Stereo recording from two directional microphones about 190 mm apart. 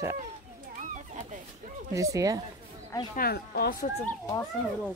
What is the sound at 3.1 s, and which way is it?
Speech, 55° left (ahead or behind).